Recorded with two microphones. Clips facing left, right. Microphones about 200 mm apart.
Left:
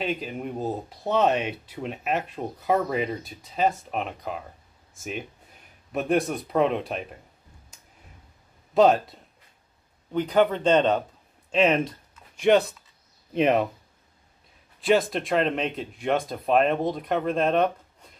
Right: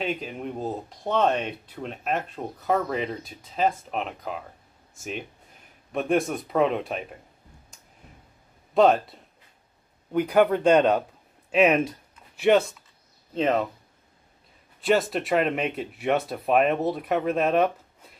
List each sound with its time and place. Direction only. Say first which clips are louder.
0.0 s speech: even; centre (ahead or behind)
5.9 s speech: even; centre (ahead or behind)
8.7 s speech: even; centre (ahead or behind)
13.3 s speech: left 2 dB; 15° left (ahead or behind)
14.8 s speech: left 1 dB; centre (ahead or behind)